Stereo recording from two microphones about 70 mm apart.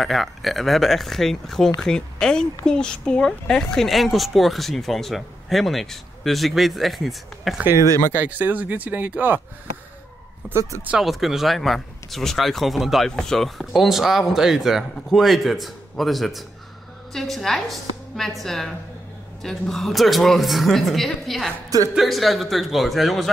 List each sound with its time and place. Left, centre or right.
0.0 s speech: centre
8.1 s speech: right
10.5 s speech: right
11.0 s speech: centre